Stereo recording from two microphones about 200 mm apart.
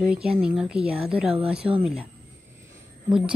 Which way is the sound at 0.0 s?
5° right (ahead or behind).